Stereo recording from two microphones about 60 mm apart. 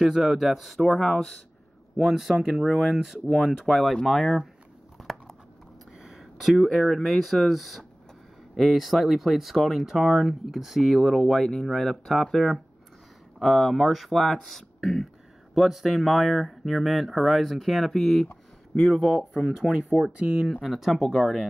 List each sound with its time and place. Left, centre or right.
0.0 s speech: centre
2.0 s speech: centre
3.6 s speech: centre
5.0 s a sound: centre
6.8 s speech: centre
20.1 s speech: right
20.6 s speech: centre